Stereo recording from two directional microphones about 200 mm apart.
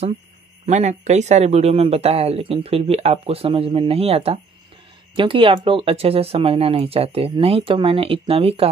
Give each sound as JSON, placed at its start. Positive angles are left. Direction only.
{"t": 0.7, "sound": "speech", "side_deg": -35}